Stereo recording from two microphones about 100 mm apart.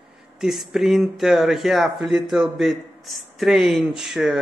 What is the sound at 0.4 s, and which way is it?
Speech, centre (ahead or behind).